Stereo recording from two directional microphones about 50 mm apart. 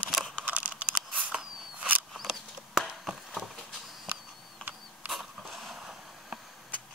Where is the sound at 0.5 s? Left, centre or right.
Right.